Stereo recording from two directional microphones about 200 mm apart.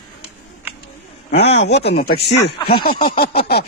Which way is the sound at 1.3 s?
60° left (ahead or behind).